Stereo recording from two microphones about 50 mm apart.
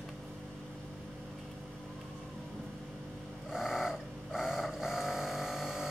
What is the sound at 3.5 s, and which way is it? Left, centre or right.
Vehicle, centre.